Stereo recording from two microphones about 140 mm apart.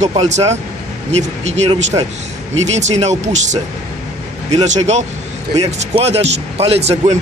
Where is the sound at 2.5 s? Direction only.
55° right (ahead or behind).